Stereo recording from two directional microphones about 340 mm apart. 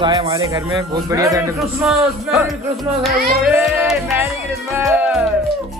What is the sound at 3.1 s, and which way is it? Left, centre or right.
Music, right.